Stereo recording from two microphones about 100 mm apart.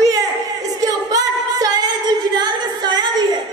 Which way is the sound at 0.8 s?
40° right (ahead or behind).